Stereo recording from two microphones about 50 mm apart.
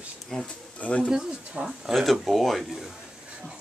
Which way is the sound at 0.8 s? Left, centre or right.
Left.